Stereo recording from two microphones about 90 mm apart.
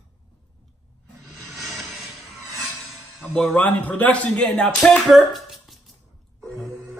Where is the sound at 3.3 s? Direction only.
15° left (ahead or behind).